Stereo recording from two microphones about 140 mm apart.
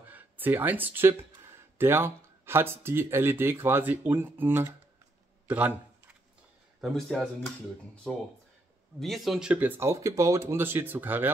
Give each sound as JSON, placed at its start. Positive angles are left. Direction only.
{"t": 0.1, "sound": "speech", "side_deg": -15}
{"t": 5.5, "sound": "a sound", "side_deg": -10}
{"t": 6.8, "sound": "speech", "side_deg": 5}